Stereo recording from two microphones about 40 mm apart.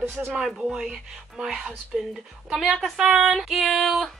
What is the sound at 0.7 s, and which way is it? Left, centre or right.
Speech, centre.